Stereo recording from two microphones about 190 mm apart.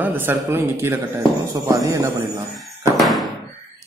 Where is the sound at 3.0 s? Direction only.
Centre (ahead or behind).